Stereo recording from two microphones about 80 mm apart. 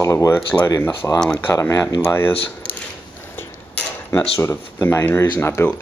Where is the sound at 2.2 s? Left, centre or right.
Left.